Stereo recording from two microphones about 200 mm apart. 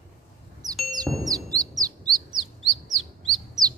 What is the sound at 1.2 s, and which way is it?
Chirp, 20° right (ahead or behind).